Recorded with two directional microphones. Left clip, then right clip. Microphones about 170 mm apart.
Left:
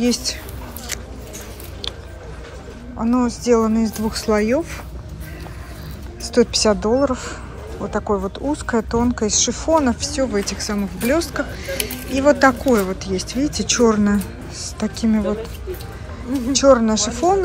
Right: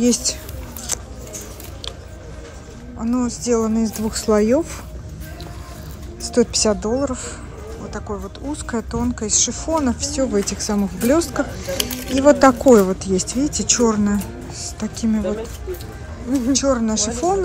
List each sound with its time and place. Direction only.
0.0 s speech: 25° right (ahead or behind)
3.0 s a woman's voice: 10° right (ahead or behind)
6.2 s a woman's voice: 15° right (ahead or behind)
16.5 s a woman's voice: 5° right (ahead or behind)